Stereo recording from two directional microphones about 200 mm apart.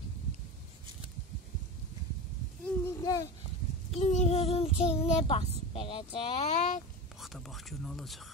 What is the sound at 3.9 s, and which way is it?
Child singing, 35° left (ahead or behind).